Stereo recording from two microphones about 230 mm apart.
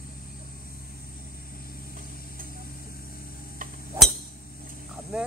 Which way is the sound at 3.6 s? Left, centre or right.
Right.